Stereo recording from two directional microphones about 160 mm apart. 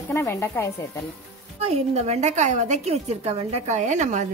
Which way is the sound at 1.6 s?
45° right (ahead or behind).